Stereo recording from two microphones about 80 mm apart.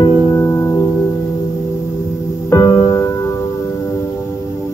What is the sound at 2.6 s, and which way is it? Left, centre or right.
Music, left.